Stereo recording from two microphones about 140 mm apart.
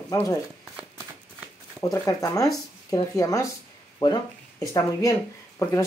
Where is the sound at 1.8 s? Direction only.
25° left (ahead or behind).